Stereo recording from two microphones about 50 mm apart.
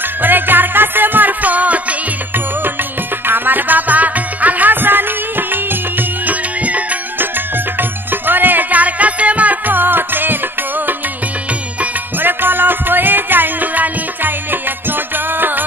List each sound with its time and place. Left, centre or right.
0.2 s music: right
3.3 s music: right
8.1 s music: right
12.2 s music: right